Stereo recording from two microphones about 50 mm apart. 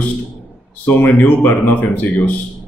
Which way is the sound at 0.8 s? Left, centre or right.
Left.